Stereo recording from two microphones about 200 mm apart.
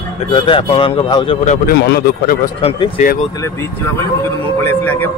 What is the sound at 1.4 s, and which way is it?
Speech, 45° left (ahead or behind).